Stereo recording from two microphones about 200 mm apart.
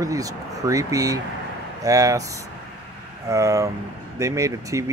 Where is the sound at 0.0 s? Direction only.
15° right (ahead or behind).